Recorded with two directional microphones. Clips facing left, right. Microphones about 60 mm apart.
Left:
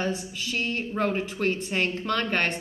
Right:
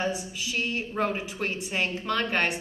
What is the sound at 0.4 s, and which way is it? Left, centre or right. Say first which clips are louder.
Speech: even; centre.